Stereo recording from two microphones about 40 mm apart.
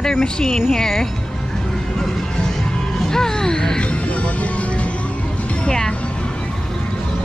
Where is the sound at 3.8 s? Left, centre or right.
Left.